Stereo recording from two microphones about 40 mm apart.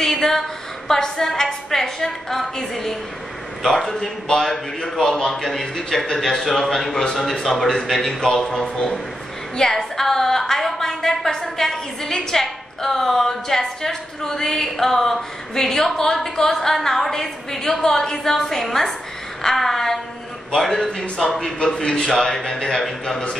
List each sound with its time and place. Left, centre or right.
0.0 s a woman's voice: centre
20.8 s a woman's voice: centre